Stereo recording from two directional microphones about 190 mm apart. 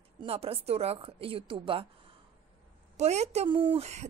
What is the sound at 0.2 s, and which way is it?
A woman's voice, 30° right (ahead or behind).